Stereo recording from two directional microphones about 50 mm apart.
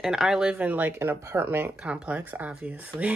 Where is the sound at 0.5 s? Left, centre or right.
Right.